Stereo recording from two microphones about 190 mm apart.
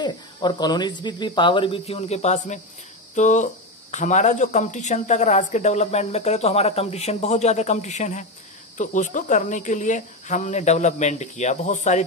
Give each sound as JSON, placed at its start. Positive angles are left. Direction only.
{"t": 0.0, "sound": "a woman's voice", "side_deg": 20}